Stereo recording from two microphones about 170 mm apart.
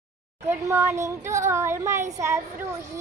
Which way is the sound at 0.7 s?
15° right (ahead or behind).